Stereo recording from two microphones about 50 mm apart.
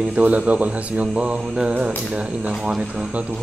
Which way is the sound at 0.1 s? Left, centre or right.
Right.